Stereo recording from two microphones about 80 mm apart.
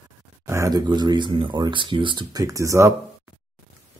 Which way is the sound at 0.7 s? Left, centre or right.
Right.